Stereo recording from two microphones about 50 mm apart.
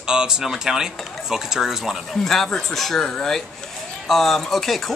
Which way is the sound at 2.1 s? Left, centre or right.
Centre.